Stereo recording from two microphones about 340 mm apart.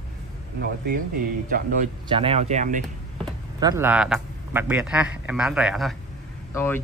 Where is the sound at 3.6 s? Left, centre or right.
Centre.